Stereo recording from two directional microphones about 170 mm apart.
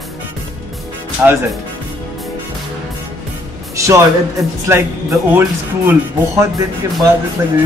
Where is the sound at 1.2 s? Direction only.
10° right (ahead or behind).